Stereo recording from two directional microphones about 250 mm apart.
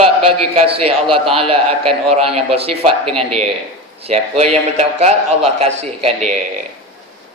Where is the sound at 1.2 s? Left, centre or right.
Right.